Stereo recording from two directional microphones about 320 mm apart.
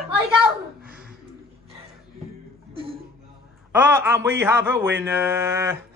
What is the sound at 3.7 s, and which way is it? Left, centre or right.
A man's voice, centre.